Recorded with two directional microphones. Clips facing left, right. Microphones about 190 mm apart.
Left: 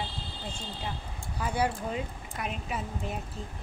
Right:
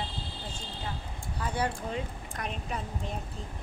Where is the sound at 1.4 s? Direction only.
10° left (ahead or behind).